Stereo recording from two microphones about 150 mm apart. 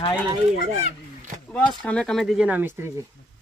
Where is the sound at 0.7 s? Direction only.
55° right (ahead or behind).